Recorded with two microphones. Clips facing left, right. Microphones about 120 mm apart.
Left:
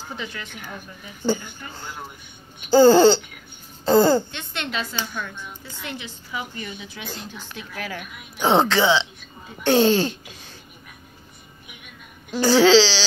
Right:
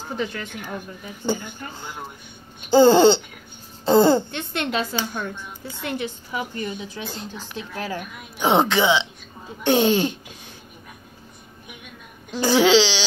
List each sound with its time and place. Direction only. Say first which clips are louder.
0.1 s speech: right 7 dB; 40° right (ahead or behind)
1.2 s speech: left 2 dB; 15° right (ahead or behind)
3.8 s babbling: right 1 dB; 20° right (ahead or behind)
4.3 s a woman's voice: right 5 dB; 50° right (ahead or behind)
6.6 s speech: right 5 dB; 35° right (ahead or behind)
8.4 s speech: even; 15° right (ahead or behind)
12.4 s speech: left 2 dB; 20° right (ahead or behind)